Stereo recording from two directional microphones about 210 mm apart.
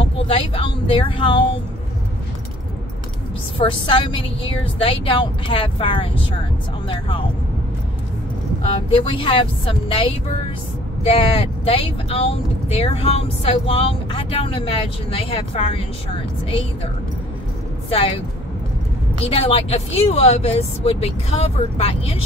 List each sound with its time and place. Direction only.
0.0 s speech: 25° left (ahead or behind)
3.5 s speech: 25° left (ahead or behind)
8.9 s speech: 25° left (ahead or behind)
19.2 s speech: 25° left (ahead or behind)